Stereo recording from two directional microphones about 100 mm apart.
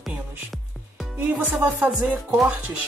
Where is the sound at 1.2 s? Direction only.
15° right (ahead or behind).